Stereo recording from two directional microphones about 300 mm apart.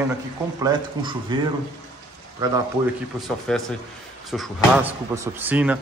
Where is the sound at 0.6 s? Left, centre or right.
Centre.